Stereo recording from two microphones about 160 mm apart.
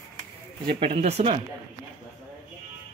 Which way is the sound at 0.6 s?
35° right (ahead or behind).